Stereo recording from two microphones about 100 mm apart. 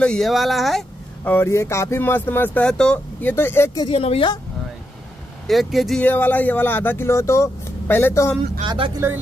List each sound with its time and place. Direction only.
0.0 s speech: 5° left (ahead or behind)
1.2 s speech: 20° left (ahead or behind)
3.9 s a woman's voice: 80° left
5.5 s speech: centre (ahead or behind)
5.9 s speech: 20° left (ahead or behind)
8.6 s speech: 60° right (ahead or behind)